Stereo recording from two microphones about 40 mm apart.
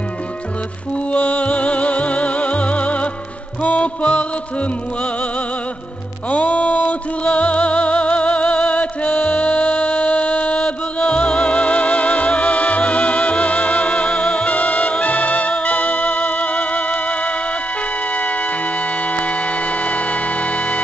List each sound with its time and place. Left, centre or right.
1.1 s music: left
6.3 s music: left